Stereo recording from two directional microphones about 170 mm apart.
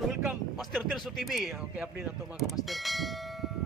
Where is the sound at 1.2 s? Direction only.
Centre (ahead or behind).